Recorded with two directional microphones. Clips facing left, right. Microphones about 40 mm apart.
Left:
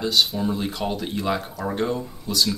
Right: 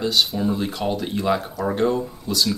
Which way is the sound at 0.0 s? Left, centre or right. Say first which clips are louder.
Right 1 dB; centre.